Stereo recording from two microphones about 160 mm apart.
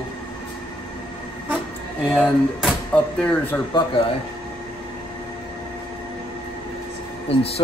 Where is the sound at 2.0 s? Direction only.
5° right (ahead or behind).